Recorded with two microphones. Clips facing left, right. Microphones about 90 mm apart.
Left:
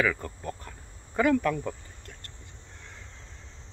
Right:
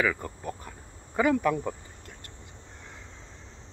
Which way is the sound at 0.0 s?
10° right (ahead or behind).